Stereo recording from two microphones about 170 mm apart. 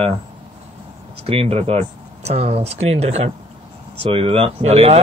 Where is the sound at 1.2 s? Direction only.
35° right (ahead or behind).